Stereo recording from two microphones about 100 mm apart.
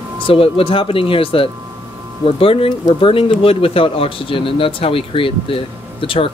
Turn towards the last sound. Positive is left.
turn(degrees=60)  # may be behind; listen again after turning